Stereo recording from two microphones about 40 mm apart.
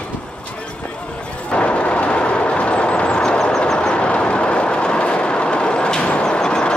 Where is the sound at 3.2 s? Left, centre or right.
Centre.